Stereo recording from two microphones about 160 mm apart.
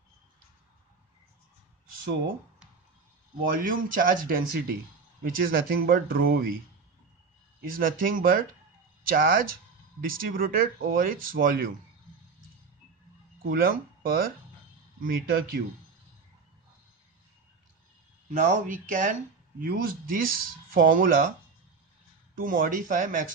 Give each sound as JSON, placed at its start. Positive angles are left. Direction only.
{"t": 3.5, "sound": "speech", "side_deg": -60}
{"t": 7.6, "sound": "speech", "side_deg": -60}
{"t": 13.4, "sound": "speech", "side_deg": -65}
{"t": 18.3, "sound": "speech", "side_deg": -55}
{"t": 19.6, "sound": "speech", "side_deg": -65}
{"t": 22.3, "sound": "speech", "side_deg": -60}